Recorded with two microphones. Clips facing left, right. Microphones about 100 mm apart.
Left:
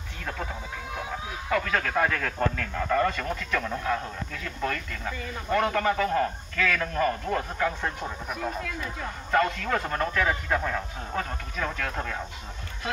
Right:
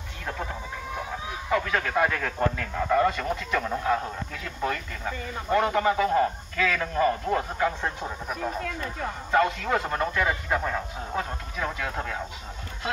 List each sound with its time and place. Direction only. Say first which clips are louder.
1.5 s a man's voice: right 1 dB; 20° right (ahead or behind)
9.3 s a man's voice: right 1 dB; 15° right (ahead or behind)